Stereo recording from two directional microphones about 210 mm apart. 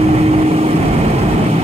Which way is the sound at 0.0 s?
30° right (ahead or behind).